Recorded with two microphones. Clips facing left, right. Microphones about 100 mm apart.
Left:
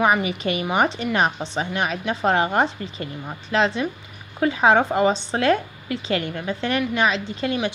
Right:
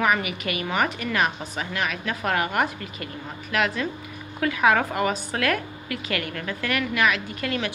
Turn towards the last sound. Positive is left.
turn(degrees=25)  # may be behind; listen again after turning